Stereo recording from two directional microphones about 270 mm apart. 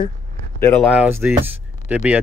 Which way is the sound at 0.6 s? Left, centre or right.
Centre.